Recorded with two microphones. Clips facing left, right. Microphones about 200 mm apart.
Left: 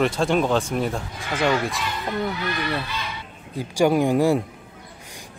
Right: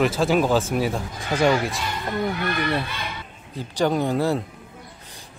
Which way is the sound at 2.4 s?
55° right (ahead or behind).